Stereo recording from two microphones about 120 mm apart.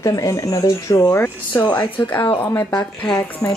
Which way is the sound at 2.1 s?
15° left (ahead or behind).